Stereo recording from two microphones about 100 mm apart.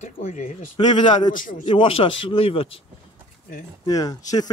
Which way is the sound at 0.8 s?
50° left (ahead or behind).